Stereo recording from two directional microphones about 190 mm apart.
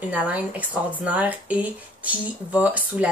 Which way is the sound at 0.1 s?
5° right (ahead or behind).